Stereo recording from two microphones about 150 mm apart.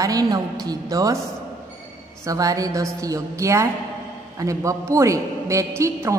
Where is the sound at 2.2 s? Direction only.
25° right (ahead or behind).